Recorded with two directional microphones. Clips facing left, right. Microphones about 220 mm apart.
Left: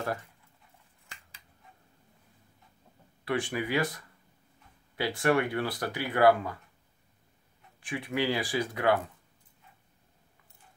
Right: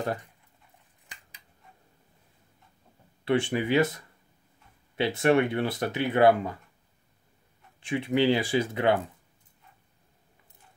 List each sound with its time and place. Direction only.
3.3 s speech: 25° right (ahead or behind)
7.8 s speech: 25° right (ahead or behind)